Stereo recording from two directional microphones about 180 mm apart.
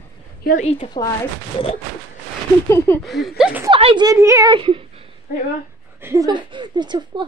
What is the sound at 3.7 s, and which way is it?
Speech, 30° right (ahead or behind).